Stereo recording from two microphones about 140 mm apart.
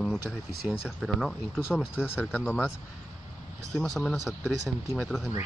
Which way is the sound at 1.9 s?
15° left (ahead or behind).